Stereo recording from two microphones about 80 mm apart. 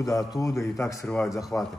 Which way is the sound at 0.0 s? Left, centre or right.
Left.